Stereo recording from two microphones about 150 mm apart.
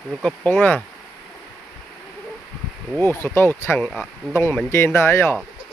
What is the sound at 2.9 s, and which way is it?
Speech, 15° left (ahead or behind).